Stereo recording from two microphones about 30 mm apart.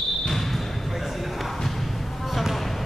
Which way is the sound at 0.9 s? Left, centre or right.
Centre.